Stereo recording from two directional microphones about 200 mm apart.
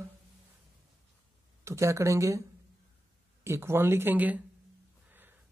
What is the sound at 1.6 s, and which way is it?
Speech, 15° right (ahead or behind).